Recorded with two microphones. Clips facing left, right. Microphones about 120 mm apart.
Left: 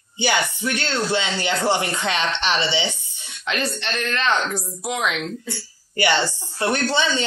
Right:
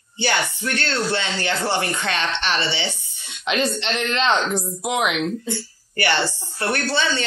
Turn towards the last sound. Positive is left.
turn(degrees=15)  # may be behind; listen again after turning